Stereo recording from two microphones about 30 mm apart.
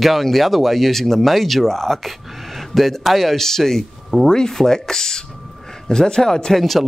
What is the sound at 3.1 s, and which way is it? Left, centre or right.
A man's voice, centre.